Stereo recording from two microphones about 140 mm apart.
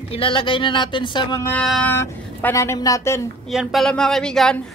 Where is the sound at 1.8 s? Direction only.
15° left (ahead or behind).